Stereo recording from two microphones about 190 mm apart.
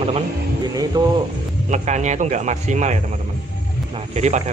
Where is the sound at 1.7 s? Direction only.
40° right (ahead or behind).